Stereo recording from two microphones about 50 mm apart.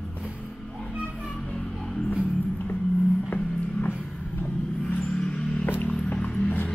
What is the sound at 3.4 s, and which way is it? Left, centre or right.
Music, left.